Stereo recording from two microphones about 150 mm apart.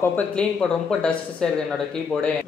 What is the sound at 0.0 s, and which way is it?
Speech, 10° left (ahead or behind).